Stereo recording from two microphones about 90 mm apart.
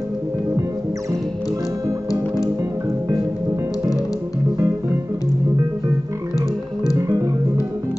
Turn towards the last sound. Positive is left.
turn(degrees=-35)  # may be behind; listen again after turning